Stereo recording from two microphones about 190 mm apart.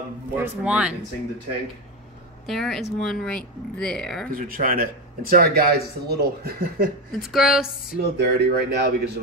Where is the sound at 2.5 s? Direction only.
Centre (ahead or behind).